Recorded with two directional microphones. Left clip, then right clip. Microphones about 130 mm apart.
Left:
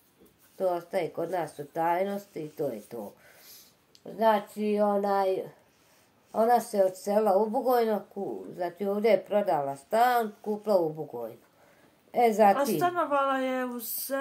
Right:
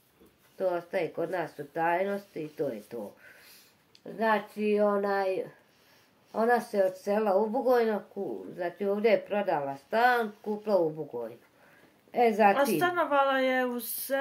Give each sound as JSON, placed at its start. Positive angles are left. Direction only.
{"t": 0.6, "sound": "speech", "side_deg": 40}
{"t": 2.9, "sound": "speech", "side_deg": 20}
{"t": 4.0, "sound": "speech", "side_deg": 40}
{"t": 10.4, "sound": "speech", "side_deg": 35}
{"t": 12.1, "sound": "speech", "side_deg": 45}
{"t": 12.5, "sound": "speech", "side_deg": -15}